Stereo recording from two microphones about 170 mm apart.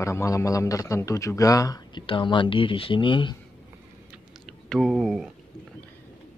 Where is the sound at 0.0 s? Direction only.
15° left (ahead or behind).